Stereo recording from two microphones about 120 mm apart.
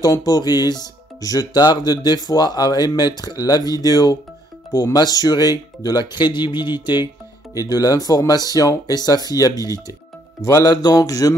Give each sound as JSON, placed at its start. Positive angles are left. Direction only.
{"t": 0.0, "sound": "speech", "side_deg": 30}
{"t": 10.4, "sound": "mantra", "side_deg": 30}